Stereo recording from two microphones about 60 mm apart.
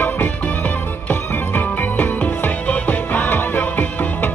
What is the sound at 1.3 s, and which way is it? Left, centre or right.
Music, left.